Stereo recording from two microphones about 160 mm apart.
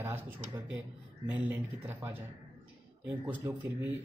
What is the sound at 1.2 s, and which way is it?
Speech, 10° right (ahead or behind).